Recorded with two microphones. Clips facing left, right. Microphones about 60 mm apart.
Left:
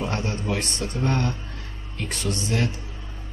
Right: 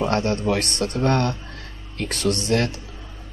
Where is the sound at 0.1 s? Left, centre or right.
Right.